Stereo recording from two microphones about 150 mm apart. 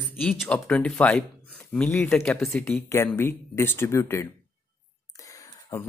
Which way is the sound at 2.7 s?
15° left (ahead or behind).